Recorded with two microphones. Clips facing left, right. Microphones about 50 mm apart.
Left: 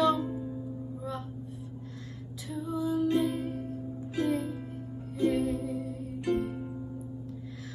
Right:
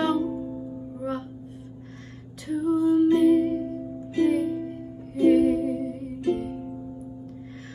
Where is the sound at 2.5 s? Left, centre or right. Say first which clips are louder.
Right 10 dB; right.